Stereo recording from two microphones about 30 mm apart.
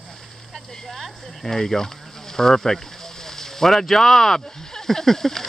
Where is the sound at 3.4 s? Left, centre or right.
Centre.